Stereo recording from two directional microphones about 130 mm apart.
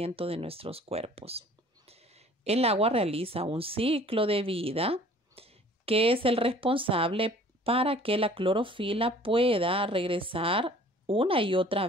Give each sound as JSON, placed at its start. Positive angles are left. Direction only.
{"t": 0.0, "sound": "speech", "side_deg": -45}